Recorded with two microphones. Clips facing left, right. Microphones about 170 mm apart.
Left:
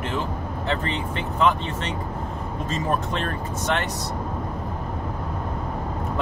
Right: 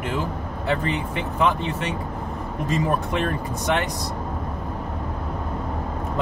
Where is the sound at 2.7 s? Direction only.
15° right (ahead or behind).